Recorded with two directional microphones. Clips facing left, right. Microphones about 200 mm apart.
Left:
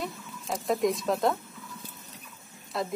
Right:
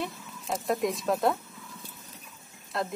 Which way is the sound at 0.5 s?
Centre (ahead or behind).